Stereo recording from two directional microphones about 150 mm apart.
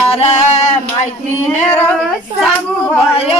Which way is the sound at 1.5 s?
15° left (ahead or behind).